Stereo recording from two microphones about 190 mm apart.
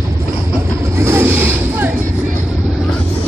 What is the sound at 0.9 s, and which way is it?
Vehicle, 15° right (ahead or behind).